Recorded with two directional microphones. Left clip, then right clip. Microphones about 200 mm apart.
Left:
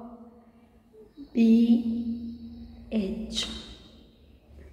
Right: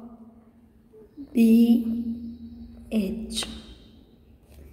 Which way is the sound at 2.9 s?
30° right (ahead or behind).